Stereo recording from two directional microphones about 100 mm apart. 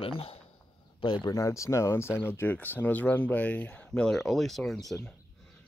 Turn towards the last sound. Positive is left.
turn(degrees=0)  # may be behind; listen again after turning